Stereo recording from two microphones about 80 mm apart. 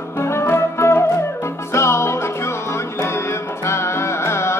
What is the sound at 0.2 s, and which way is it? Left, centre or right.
Music, left.